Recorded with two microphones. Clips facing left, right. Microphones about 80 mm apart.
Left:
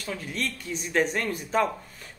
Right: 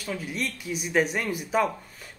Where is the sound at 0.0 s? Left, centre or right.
Centre.